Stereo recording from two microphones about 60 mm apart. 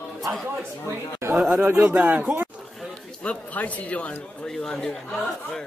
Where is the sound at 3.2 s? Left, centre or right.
Left.